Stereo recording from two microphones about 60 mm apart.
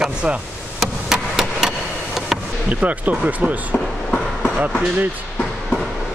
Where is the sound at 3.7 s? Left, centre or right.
Centre.